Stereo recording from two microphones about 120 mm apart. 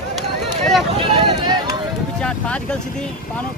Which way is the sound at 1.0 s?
45° right (ahead or behind).